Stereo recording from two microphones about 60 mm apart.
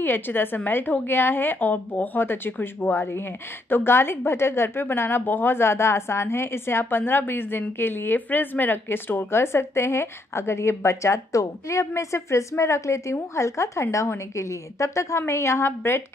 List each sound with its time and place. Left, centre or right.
0.0 s a woman's voice: left